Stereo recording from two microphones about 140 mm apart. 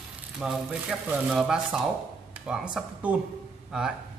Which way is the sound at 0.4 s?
5° right (ahead or behind).